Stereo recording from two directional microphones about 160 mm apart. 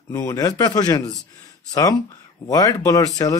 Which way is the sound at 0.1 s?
20° left (ahead or behind).